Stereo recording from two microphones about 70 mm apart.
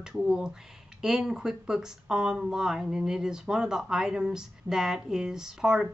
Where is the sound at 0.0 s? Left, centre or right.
Centre.